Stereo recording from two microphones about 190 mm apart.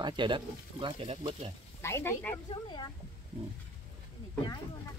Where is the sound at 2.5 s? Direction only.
25° left (ahead or behind).